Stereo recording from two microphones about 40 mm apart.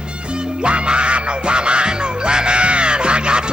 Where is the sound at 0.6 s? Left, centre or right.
Right.